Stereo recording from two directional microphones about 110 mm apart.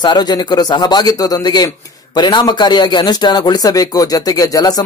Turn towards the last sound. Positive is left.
turn(degrees=35)  # may be behind; listen again after turning